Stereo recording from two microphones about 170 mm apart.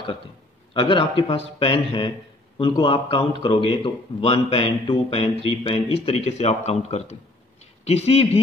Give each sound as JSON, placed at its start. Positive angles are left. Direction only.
{"t": 0.7, "sound": "speech", "side_deg": 30}